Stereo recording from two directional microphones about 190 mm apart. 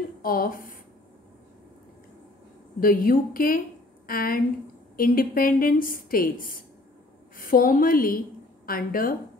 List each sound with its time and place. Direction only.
0.2 s a woman's voice: 50° left (ahead or behind)
2.8 s a woman's voice: 50° left (ahead or behind)